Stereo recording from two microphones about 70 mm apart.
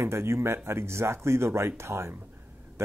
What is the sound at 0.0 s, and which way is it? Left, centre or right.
Speech, right.